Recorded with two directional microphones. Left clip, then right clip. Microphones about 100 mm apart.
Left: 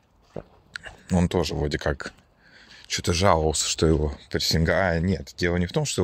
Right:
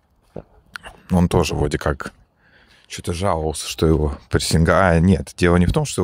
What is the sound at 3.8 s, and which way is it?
Speech, 60° right (ahead or behind).